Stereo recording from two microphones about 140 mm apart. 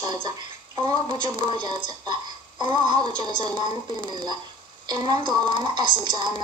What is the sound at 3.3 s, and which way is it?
Speech, 35° right (ahead or behind).